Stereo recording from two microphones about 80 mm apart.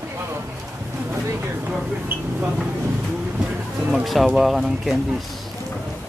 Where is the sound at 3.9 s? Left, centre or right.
Centre.